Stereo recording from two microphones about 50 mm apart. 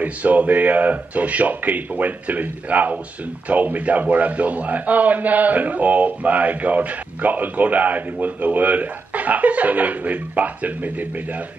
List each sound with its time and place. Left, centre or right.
0.0 s a man's voice: right